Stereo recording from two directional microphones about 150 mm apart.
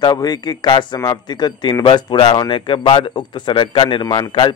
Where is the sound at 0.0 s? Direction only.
30° left (ahead or behind).